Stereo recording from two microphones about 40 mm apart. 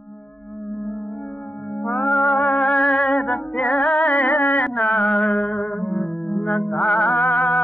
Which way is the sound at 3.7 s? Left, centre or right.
Left.